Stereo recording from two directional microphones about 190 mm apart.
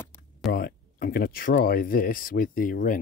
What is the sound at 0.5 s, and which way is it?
Speech, 55° left (ahead or behind).